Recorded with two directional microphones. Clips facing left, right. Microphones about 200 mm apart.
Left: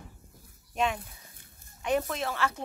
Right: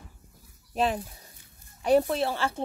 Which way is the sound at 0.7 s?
35° right (ahead or behind).